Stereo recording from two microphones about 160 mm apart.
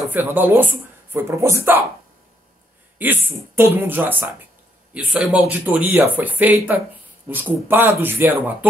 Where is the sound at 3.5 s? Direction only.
15° right (ahead or behind).